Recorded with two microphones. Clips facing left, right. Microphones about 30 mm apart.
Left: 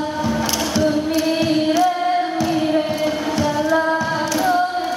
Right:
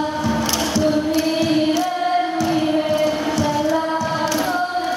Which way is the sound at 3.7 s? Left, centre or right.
Centre.